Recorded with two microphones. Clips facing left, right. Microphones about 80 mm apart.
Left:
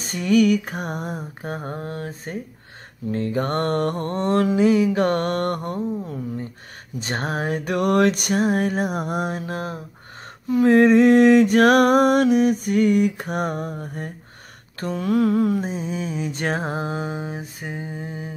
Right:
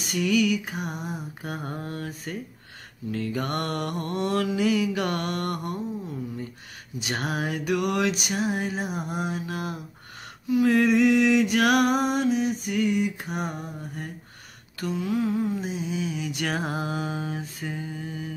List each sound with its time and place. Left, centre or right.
0.0 s a sound: left
1.4 s mantra: left
7.0 s a sound: left
14.8 s mantra: left
15.0 s mantra: left
15.6 s music: left